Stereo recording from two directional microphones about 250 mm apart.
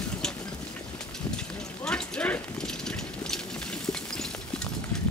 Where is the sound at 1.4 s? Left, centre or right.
Centre.